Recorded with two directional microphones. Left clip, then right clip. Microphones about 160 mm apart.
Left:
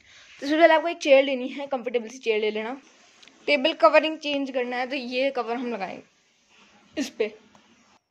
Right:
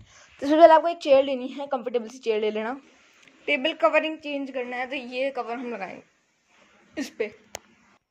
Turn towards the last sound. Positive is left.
turn(degrees=30)  # may be behind; listen again after turning